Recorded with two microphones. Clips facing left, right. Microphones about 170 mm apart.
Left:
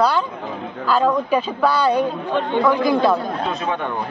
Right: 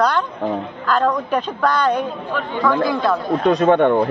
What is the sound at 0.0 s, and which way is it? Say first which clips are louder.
A woman's voice: right 1 dB; 5° left (ahead or behind).